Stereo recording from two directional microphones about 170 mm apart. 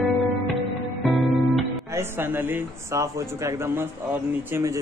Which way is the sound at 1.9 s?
15° right (ahead or behind).